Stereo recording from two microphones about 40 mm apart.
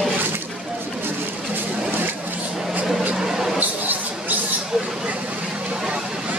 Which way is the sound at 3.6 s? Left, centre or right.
Right.